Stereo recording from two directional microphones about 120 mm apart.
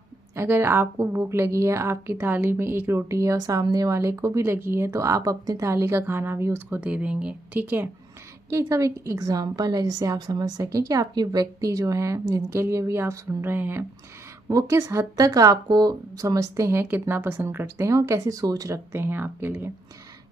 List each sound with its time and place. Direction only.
0.4 s a woman's voice: 20° right (ahead or behind)